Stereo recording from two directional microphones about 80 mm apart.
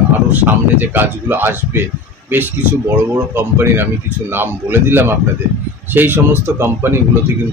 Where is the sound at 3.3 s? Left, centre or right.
Right.